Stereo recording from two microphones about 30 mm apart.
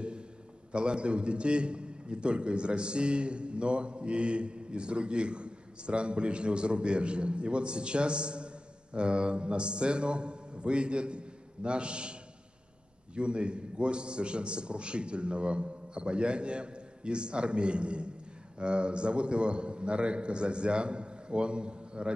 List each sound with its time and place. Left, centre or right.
0.7 s a man's voice: right